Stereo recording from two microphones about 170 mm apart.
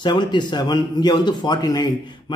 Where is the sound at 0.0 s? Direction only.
25° left (ahead or behind).